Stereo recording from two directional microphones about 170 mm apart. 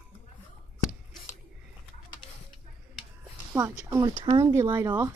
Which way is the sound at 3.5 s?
20° right (ahead or behind).